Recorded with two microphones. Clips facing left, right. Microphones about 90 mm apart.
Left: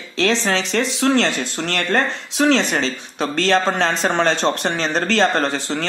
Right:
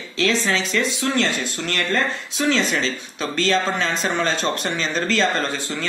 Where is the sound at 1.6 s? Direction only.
55° left (ahead or behind).